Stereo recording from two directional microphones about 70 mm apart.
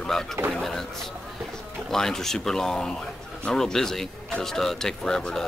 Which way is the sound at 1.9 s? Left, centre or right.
Centre.